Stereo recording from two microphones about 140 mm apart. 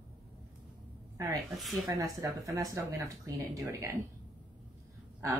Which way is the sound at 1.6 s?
Centre (ahead or behind).